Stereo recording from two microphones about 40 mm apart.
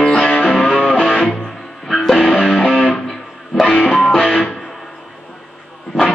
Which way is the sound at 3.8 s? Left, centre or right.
Left.